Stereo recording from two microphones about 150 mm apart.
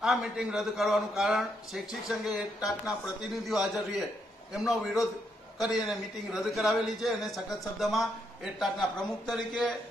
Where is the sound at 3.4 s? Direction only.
Centre (ahead or behind).